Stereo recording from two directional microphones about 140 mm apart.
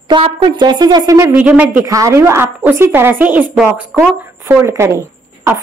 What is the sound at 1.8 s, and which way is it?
A woman's voice, 25° right (ahead or behind).